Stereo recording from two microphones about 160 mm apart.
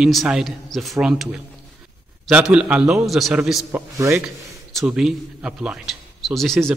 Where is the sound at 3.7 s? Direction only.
15° right (ahead or behind).